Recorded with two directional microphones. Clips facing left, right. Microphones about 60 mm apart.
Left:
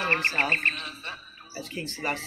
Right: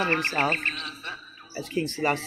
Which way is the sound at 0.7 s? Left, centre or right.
Left.